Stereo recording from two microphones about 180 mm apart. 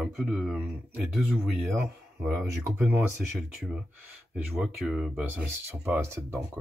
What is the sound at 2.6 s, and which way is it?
Speech, 10° right (ahead or behind).